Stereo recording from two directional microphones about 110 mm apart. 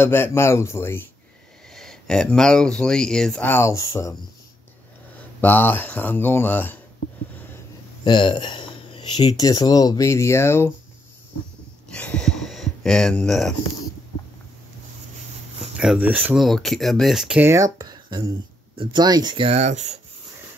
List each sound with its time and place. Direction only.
0.0 s speech: 20° left (ahead or behind)
1.7 s speech: 5° left (ahead or behind)
3.4 s speech: 25° left (ahead or behind)
5.4 s speech: 20° left (ahead or behind)
8.0 s a sound: 45° left (ahead or behind)
9.4 s speech: 35° left (ahead or behind)
11.9 s speech: 10° left (ahead or behind)
15.6 s a sound: 5° right (ahead or behind)
16.0 s speech: 15° right (ahead or behind)
16.3 s speech: centre (ahead or behind)
17.4 s speech: 30° right (ahead or behind)
17.7 s a sound: 40° right (ahead or behind)
18.8 s speech: 45° right (ahead or behind)
19.4 s speech: 90° right